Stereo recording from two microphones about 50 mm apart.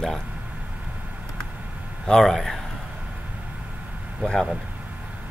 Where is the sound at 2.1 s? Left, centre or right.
Centre.